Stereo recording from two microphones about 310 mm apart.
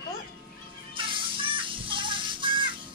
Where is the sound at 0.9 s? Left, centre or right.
Centre.